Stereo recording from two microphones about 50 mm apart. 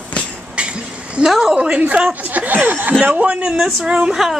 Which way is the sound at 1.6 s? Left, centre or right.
Right.